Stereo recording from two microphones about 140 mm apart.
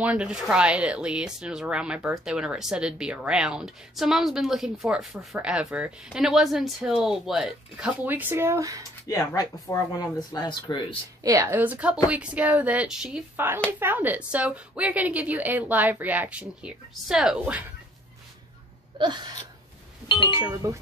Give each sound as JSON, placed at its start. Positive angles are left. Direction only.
{"t": 0.0, "sound": "a woman's voice", "side_deg": -10}
{"t": 9.0, "sound": "speech", "side_deg": 25}
{"t": 11.2, "sound": "a woman's voice", "side_deg": -20}
{"t": 18.9, "sound": "gasp", "side_deg": -35}
{"t": 20.1, "sound": "speech", "side_deg": 35}
{"t": 20.3, "sound": "speech", "side_deg": -20}